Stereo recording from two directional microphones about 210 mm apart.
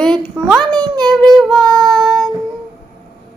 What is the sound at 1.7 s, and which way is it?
Child singing, 20° right (ahead or behind).